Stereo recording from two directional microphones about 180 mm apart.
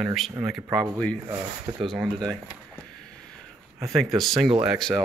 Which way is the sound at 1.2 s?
20° right (ahead or behind).